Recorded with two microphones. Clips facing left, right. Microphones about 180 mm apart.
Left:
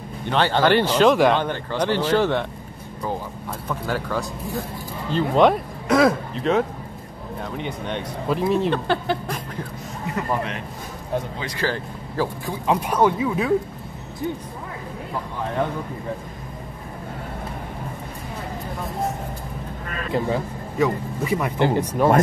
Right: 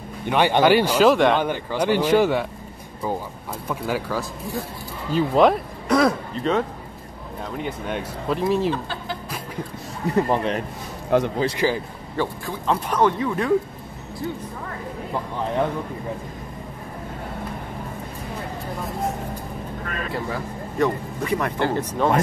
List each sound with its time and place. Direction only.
0.3 s speech: 15° right (ahead or behind)
3.6 s speech: 10° right (ahead or behind)
8.6 s speech: 70° left (ahead or behind)
10.0 s speech: 30° right (ahead or behind)
11.1 s speech: 80° right
11.5 s speech: 15° right (ahead or behind)
12.4 s speech: 15° left (ahead or behind)
20.1 s speech: 25° left (ahead or behind)
20.7 s speech: 5° left (ahead or behind)